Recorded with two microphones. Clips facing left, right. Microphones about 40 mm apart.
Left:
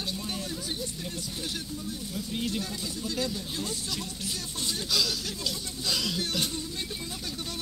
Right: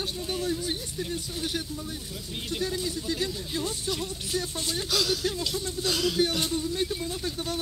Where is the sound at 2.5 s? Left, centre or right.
Right.